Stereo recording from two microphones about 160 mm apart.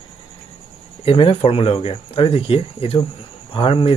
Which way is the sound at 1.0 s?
35° left (ahead or behind).